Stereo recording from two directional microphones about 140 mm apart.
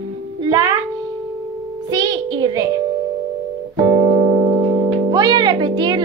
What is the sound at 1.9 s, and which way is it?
Speech, 25° right (ahead or behind).